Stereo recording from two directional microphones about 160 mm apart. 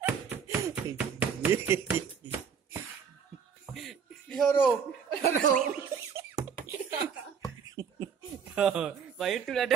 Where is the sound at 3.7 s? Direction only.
Centre (ahead or behind).